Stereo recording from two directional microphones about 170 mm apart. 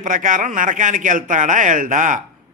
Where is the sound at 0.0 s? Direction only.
50° right (ahead or behind).